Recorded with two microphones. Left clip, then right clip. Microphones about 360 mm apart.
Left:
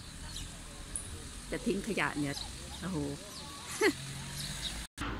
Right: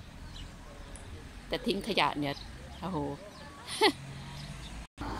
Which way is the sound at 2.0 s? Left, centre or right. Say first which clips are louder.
Right 7 dB; centre.